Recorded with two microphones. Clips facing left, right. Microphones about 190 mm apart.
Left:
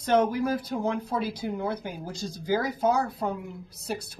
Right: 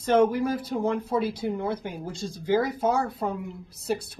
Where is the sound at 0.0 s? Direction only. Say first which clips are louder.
Right 2 dB; centre (ahead or behind).